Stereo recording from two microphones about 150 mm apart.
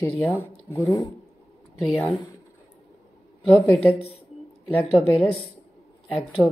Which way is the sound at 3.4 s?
Centre (ahead or behind).